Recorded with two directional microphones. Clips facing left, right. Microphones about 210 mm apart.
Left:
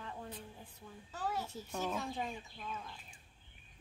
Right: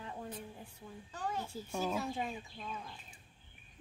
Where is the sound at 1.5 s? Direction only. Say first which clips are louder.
Right 2 dB; 10° right (ahead or behind).